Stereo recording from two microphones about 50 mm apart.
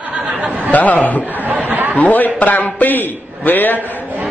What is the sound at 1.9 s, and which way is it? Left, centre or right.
A man's voice, left.